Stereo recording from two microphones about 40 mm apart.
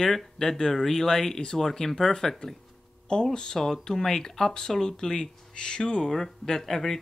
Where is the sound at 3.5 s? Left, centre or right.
Centre.